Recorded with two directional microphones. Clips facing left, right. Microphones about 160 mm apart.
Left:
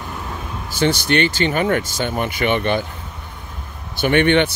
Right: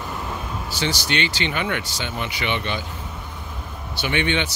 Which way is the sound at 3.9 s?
50° left (ahead or behind).